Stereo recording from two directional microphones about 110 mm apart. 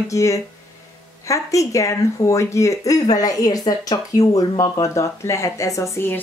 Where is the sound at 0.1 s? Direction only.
30° left (ahead or behind).